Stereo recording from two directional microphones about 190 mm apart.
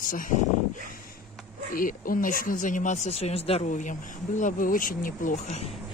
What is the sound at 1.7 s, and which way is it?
Speech, 45° left (ahead or behind).